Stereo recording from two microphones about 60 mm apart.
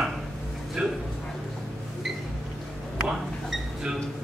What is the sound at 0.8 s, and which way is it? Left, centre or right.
Speech, centre.